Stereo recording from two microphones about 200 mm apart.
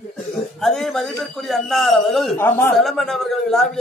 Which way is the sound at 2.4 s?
15° left (ahead or behind).